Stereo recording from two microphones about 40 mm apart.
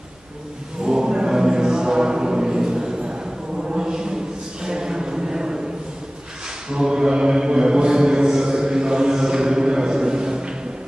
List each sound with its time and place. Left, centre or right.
0.8 s choir: centre
3.6 s a sound: centre
6.7 s mantra: centre